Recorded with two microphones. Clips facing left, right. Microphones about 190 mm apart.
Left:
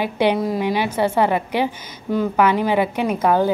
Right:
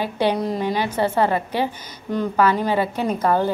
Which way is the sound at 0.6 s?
15° left (ahead or behind).